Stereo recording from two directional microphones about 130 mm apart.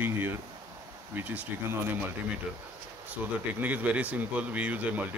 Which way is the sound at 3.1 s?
10° right (ahead or behind).